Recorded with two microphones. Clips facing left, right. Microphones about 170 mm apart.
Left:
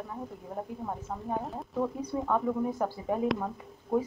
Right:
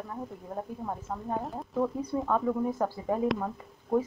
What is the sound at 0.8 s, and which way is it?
Speech, centre (ahead or behind).